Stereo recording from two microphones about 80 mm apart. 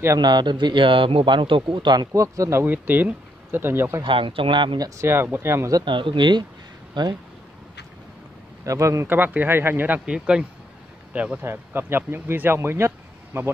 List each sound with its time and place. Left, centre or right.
0.2 s speech: right
2.1 s speech: right
2.6 s speech: right
4.0 s speech: right
4.7 s speech: right
5.0 s speech: right
5.9 s speech: right
6.9 s speech: right
8.6 s speech: right
9.0 s speech: right
11.4 s speech: right